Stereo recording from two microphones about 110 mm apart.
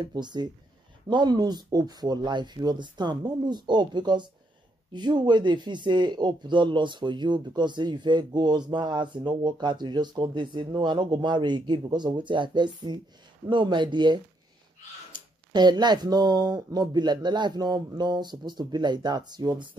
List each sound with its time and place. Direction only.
0.0 s speech: 40° right (ahead or behind)